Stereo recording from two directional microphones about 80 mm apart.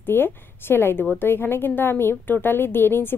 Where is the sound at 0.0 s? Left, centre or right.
Left.